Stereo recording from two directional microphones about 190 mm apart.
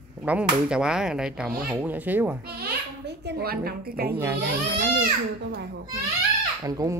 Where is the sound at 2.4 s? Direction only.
55° right (ahead or behind).